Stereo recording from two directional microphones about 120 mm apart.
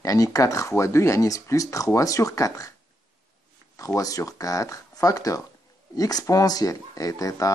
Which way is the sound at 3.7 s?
30° left (ahead or behind).